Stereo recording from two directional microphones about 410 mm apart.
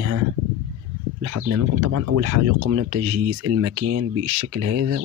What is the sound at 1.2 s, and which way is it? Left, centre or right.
Speech, right.